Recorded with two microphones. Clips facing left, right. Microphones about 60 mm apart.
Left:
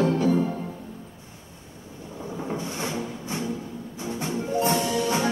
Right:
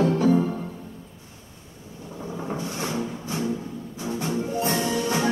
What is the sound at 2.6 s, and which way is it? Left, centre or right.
Wood, left.